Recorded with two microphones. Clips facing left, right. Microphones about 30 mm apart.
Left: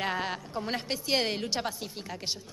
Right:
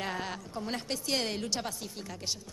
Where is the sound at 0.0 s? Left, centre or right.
Left.